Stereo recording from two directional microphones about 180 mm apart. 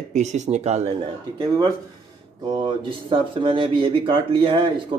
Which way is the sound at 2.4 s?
25° right (ahead or behind).